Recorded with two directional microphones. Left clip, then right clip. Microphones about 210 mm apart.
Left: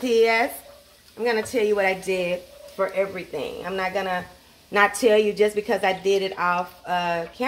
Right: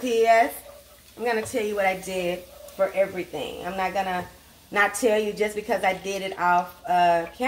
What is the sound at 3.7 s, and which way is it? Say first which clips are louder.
Speech: even; 40° left (ahead or behind).